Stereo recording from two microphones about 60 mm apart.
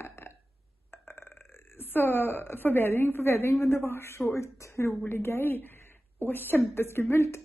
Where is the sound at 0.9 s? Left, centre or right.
Left.